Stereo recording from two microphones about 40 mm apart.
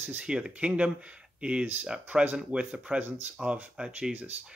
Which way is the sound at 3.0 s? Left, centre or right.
Right.